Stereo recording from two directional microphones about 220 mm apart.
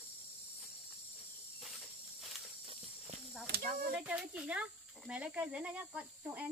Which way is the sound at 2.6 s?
25° right (ahead or behind).